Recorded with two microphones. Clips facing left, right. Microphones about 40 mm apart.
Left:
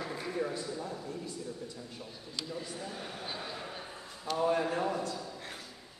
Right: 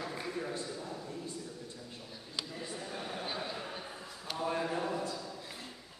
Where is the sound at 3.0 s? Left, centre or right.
Centre.